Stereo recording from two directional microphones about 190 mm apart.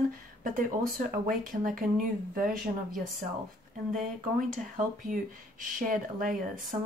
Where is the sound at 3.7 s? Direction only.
45° right (ahead or behind).